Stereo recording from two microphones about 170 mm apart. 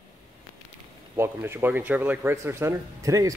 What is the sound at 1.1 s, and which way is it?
Speech, 15° right (ahead or behind).